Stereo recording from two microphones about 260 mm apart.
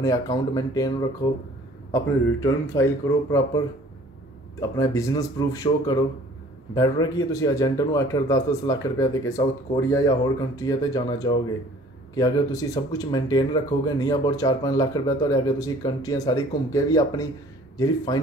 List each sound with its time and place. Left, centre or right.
0.0 s speech: centre
2.4 s speech: centre